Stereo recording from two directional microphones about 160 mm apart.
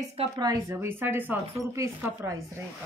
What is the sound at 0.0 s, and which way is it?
Speech, 40° right (ahead or behind).